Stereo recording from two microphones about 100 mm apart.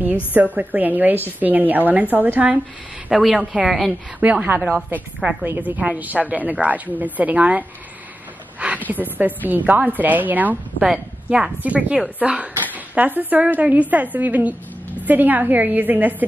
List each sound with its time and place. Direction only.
0.3 s a woman's voice: 15° right (ahead or behind)
3.1 s a woman's voice: 5° right (ahead or behind)
4.2 s a woman's voice: 15° right (ahead or behind)
8.5 s a sound: 15° right (ahead or behind)
8.9 s a woman's voice: 15° right (ahead or behind)
10.8 s a woman's voice: 5° right (ahead or behind)